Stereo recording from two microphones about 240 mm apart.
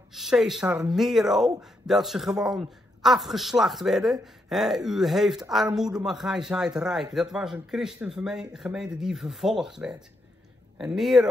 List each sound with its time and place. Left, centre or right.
0.1 s a man's voice: centre